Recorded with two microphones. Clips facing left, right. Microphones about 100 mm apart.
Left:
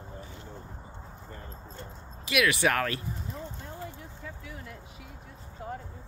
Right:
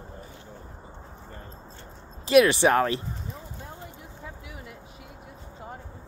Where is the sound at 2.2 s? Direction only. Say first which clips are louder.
Right 8 dB; 30° right (ahead or behind).